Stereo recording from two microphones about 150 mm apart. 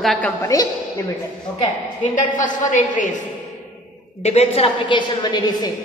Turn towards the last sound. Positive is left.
turn(degrees=30)  # may be behind; listen again after turning